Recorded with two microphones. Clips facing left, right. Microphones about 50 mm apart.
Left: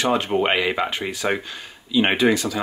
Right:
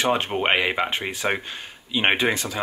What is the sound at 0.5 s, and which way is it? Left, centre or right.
Speech, right.